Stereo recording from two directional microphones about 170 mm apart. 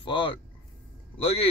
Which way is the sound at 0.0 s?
30° left (ahead or behind).